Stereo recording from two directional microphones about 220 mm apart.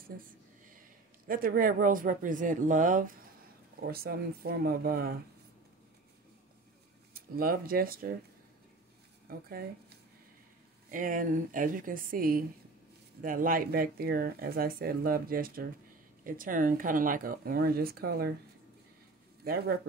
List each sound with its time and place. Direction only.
1.2 s speech: 40° right (ahead or behind)
7.2 s speech: 40° right (ahead or behind)
9.3 s speech: 45° right (ahead or behind)
10.9 s speech: 40° right (ahead or behind)
19.4 s speech: 45° right (ahead or behind)